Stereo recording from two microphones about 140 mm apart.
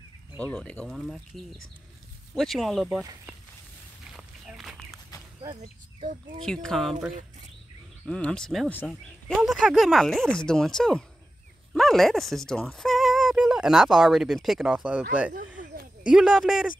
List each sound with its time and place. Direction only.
0.4 s speech: 10° left (ahead or behind)
3.0 s speech: 25° right (ahead or behind)
4.1 s walk: centre (ahead or behind)
5.4 s speech: 30° right (ahead or behind)
6.4 s speech: 5° left (ahead or behind)
9.3 s speech: centre (ahead or behind)
16.1 s speech: 5° right (ahead or behind)